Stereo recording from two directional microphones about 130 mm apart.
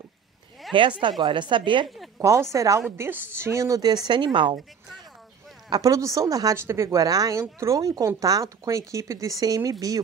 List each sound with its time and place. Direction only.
0.7 s a woman's voice: 40° right (ahead or behind)
2.1 s speech: 20° right (ahead or behind); by 4.6 s 40° right (ahead or behind)
5.7 s speech: 25° right (ahead or behind)